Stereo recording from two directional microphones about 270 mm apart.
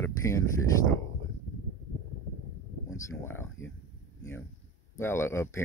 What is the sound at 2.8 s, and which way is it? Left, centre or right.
Speech, centre.